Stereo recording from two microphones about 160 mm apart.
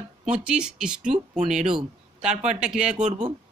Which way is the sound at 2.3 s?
45° right (ahead or behind).